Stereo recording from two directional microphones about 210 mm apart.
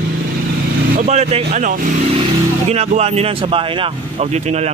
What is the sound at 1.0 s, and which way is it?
Speech, 30° right (ahead or behind).